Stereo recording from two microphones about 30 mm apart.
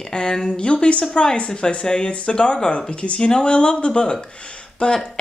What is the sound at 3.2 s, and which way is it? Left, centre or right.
Speech, left.